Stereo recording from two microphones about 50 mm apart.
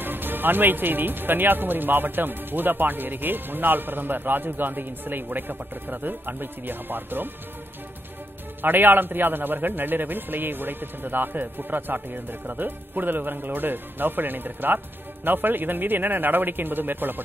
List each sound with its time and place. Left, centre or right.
0.0 s speech: right
8.6 s speech: right